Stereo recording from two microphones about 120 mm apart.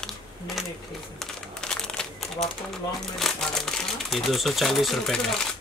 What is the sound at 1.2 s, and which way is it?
Crumpling, 5° left (ahead or behind).